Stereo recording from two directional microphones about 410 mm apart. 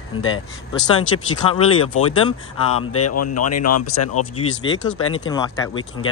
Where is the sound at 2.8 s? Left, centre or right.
Left.